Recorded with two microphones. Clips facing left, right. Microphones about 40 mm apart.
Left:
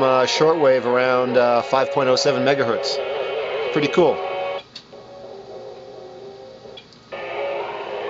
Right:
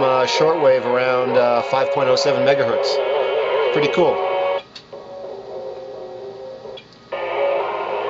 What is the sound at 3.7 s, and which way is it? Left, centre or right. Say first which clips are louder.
Music: left 3 dB; right.